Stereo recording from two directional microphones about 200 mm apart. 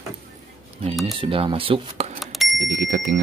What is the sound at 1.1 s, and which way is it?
Speech, 25° right (ahead or behind).